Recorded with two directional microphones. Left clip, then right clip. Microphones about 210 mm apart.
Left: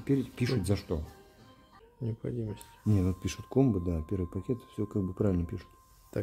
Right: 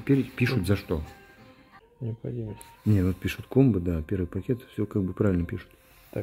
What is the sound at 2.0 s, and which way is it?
Speech, 15° left (ahead or behind).